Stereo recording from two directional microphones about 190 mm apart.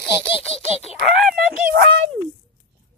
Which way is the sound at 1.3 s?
55° right (ahead or behind).